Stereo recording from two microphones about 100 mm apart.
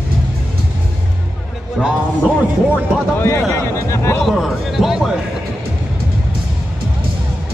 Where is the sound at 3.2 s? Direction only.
25° left (ahead or behind).